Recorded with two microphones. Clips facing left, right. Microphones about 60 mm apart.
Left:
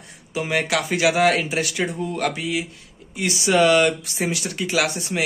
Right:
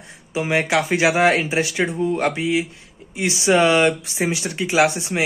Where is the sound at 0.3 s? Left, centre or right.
Right.